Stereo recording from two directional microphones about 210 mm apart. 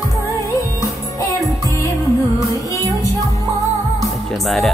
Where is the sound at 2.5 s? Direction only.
15° left (ahead or behind).